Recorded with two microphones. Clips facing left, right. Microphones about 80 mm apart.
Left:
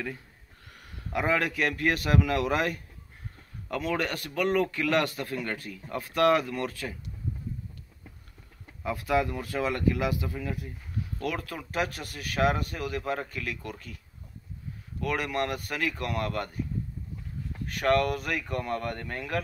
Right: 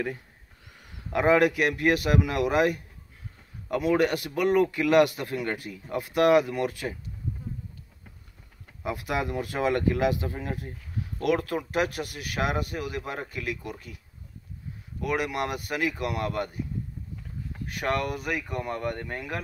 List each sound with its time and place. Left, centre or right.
1.1 s speech: right
8.8 s speech: right
15.0 s speech: centre
17.7 s speech: centre